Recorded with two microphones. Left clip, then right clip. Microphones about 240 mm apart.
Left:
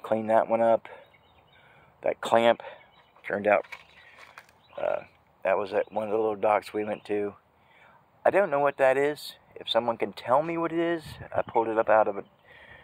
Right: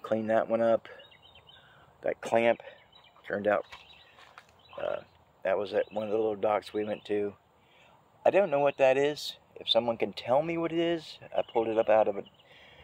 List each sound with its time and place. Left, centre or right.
0.0 s speech: centre
4.7 s speech: centre